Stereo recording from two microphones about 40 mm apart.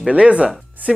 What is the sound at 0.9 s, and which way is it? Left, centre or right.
Speech, centre.